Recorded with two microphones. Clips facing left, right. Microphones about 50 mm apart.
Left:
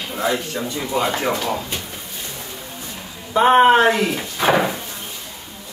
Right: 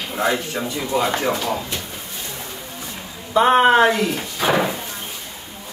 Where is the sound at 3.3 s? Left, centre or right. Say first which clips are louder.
Left 1 dB; left.